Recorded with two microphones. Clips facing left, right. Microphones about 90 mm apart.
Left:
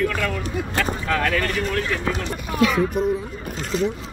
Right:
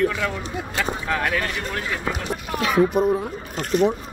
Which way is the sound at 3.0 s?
55° right (ahead or behind).